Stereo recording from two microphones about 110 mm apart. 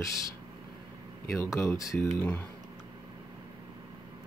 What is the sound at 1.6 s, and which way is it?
Speech, 25° left (ahead or behind).